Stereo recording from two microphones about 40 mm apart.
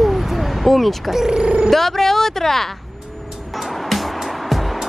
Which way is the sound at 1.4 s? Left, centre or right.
Right.